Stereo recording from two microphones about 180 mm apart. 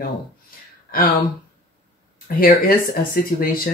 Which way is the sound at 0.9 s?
55° left (ahead or behind).